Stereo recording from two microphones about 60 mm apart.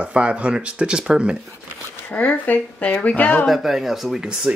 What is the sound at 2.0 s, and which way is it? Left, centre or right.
Speech, left.